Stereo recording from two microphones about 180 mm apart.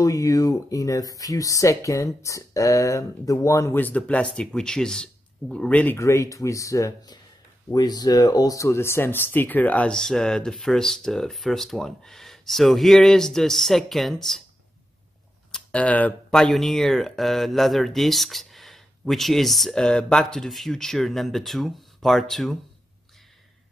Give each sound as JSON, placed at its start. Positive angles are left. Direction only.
{"t": 0.0, "sound": "speech", "side_deg": 20}
{"t": 15.5, "sound": "speech", "side_deg": 5}